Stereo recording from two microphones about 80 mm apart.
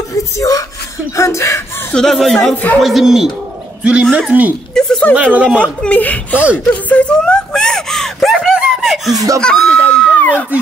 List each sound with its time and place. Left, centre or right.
0.1 s speech: left
2.0 s speech: centre
2.5 s speech: left
2.8 s speech: centre
4.7 s a sound: centre
5.1 s speech: centre
5.6 s speech: centre
6.9 s gasp: centre
8.5 s laughter: centre
9.1 s speech: right
9.4 s a sound: centre